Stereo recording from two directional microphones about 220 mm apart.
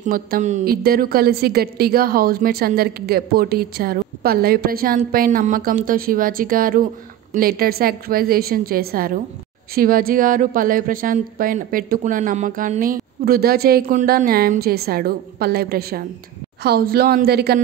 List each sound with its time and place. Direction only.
0.0 s a woman's voice: 35° right (ahead or behind)